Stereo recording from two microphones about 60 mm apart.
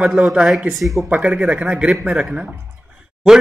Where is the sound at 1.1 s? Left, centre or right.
Right.